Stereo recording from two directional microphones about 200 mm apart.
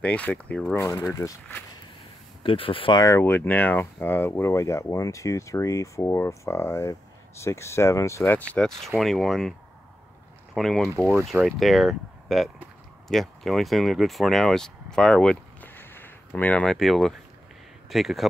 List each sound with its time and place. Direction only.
0.0 s speech: 5° left (ahead or behind)
0.7 s speech: 15° left (ahead or behind)
2.4 s speech: 25° left (ahead or behind); by 18.3 s centre (ahead or behind)